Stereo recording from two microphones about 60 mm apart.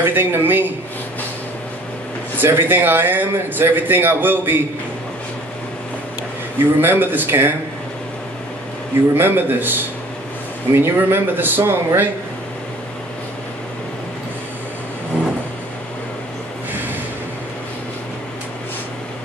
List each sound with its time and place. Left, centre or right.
0.0 s a man's voice: right
2.3 s a man's voice: right
6.8 s a man's voice: right
9.1 s a man's voice: right